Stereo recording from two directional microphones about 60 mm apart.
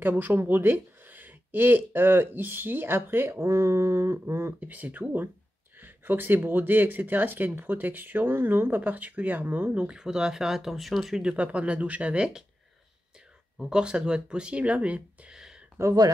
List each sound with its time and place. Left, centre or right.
0.0 s speech: right
3.3 s speech: right
4.6 s speech: right
9.8 s speech: centre
11.2 s speech: right
13.7 s speech: centre
15.8 s speech: right